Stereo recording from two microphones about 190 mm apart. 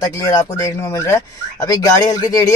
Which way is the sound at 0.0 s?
15° left (ahead or behind).